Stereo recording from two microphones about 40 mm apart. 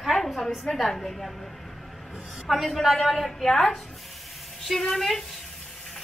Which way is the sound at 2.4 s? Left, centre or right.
Centre.